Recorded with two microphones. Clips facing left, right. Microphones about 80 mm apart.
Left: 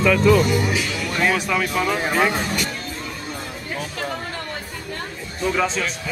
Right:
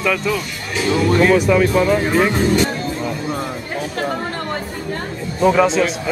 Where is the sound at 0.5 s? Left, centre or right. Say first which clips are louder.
Left 8 dB; centre.